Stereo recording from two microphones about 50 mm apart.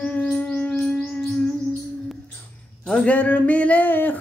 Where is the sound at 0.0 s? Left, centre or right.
Left.